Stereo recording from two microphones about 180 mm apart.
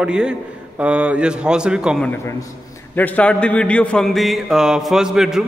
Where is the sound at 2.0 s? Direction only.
15° left (ahead or behind); by 5.4 s 5° right (ahead or behind).